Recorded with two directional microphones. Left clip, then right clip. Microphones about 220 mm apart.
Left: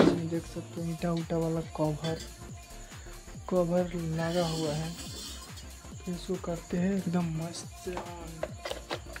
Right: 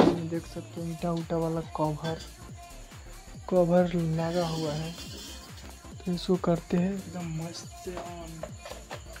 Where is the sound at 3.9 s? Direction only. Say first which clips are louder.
Right 2 dB; centre (ahead or behind).